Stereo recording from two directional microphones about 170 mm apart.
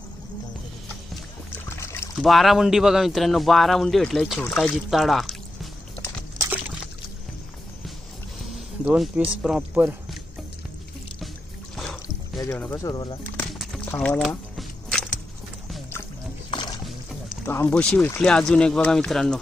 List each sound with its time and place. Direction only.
1.7 s rowboat: 15° left (ahead or behind)
2.1 s speech: centre (ahead or behind)
8.5 s a sound: centre (ahead or behind)
9.4 s speech: centre (ahead or behind)
11.7 s a sound: 5° left (ahead or behind)
12.5 s speech: 15° left (ahead or behind)
13.9 s a sound: 5° left (ahead or behind)
16.4 s music: 25° left (ahead or behind)
17.5 s speech: 10° left (ahead or behind)